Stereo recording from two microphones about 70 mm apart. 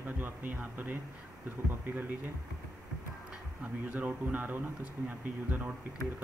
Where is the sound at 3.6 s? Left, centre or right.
Right.